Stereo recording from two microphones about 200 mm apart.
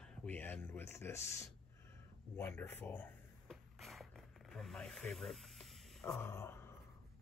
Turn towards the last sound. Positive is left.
turn(degrees=10)  # may be behind; listen again after turning